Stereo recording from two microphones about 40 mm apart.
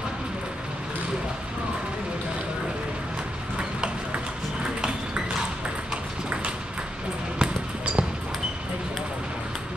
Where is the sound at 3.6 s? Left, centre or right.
Right.